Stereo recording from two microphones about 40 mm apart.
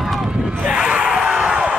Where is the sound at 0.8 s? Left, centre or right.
Right.